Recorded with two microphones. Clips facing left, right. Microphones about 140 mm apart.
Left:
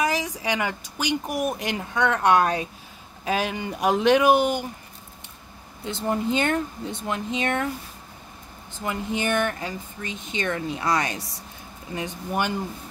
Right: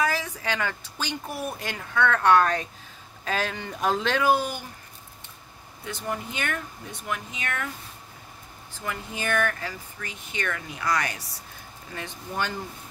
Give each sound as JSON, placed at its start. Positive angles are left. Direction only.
{"t": 0.0, "sound": "speech", "side_deg": 15}
{"t": 5.9, "sound": "speech", "side_deg": 30}
{"t": 8.7, "sound": "speech", "side_deg": 20}